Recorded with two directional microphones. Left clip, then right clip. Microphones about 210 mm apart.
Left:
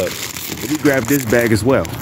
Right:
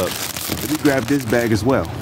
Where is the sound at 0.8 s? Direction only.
5° left (ahead or behind).